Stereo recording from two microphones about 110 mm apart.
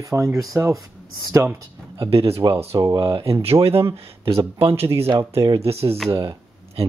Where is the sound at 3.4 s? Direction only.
65° right (ahead or behind).